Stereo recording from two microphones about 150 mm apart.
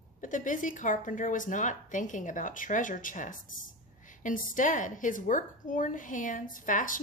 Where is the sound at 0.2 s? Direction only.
60° left (ahead or behind).